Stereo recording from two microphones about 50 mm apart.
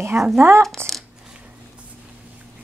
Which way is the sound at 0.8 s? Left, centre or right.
Right.